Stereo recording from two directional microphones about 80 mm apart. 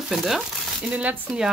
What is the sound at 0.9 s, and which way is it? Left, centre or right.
Speech, centre.